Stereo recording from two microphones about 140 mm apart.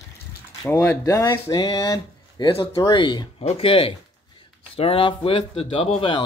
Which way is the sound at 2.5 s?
35° left (ahead or behind).